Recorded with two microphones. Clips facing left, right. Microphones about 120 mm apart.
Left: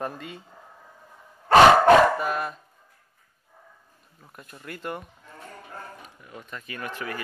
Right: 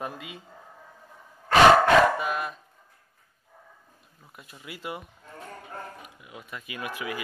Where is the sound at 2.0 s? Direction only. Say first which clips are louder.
Left 1 dB; 5° right (ahead or behind).